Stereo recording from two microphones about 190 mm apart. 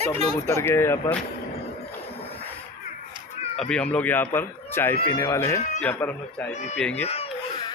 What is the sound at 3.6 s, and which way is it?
Speech, 5° left (ahead or behind).